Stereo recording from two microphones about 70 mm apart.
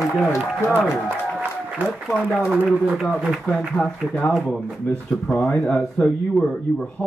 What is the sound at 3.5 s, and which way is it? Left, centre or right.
Speech, centre.